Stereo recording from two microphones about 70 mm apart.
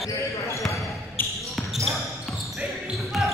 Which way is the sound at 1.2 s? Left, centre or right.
Left.